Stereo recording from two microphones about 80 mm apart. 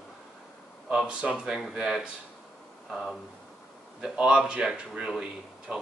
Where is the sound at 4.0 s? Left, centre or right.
Centre.